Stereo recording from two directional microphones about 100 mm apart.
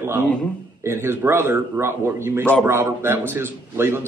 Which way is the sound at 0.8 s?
25° right (ahead or behind).